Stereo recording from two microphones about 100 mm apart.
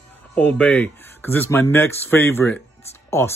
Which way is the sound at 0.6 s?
15° left (ahead or behind).